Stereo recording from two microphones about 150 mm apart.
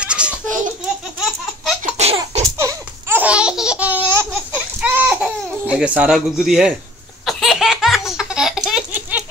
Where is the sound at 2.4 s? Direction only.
20° right (ahead or behind).